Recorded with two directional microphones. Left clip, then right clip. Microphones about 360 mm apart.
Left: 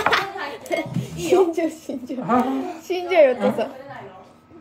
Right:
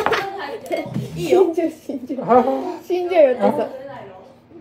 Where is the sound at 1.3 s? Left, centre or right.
Left.